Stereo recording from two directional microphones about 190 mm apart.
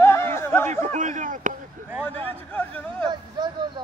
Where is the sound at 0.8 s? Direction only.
40° right (ahead or behind).